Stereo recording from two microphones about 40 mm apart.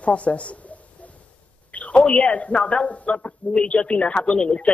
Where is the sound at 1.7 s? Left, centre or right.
Left.